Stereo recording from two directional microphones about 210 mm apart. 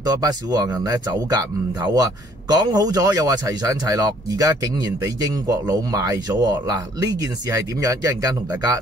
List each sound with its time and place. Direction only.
0.0 s speech: 20° right (ahead or behind)